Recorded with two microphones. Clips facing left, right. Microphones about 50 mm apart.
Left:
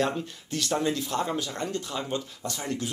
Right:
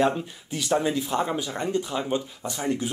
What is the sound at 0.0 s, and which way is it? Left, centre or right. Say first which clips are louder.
Speech: right 4 dB; centre.